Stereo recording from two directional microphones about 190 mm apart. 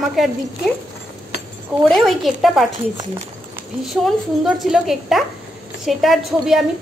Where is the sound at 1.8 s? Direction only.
Centre (ahead or behind).